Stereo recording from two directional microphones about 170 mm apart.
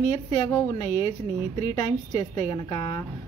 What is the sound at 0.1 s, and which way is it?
A woman's voice, 20° left (ahead or behind).